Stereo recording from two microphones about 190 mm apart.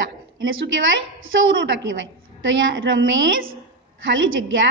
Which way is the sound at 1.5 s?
75° right (ahead or behind).